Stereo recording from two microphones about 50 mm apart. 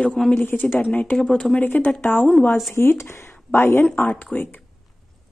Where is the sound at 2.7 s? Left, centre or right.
Left.